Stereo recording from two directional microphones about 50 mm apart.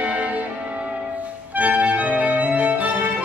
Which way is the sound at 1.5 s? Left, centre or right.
Right.